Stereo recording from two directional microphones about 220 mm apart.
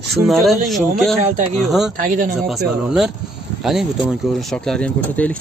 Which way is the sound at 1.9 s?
40° right (ahead or behind).